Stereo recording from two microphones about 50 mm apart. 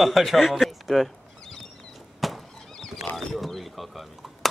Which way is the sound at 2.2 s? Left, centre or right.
Centre.